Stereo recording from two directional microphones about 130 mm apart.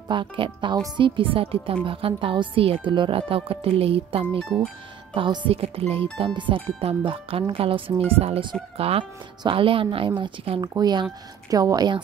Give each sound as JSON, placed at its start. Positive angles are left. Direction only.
{"t": 0.1, "sound": "a woman's voice", "side_deg": -40}
{"t": 10.6, "sound": "speech", "side_deg": -30}